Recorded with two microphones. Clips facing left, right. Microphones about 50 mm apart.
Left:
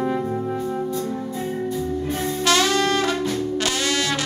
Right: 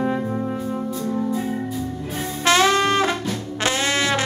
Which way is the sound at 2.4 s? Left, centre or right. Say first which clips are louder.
Right 3 dB; right.